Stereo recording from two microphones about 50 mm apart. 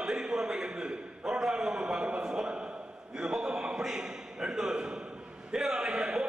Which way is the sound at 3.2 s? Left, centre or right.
Centre.